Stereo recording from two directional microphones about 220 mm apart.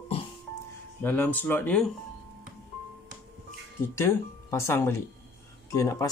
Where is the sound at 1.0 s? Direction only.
10° left (ahead or behind).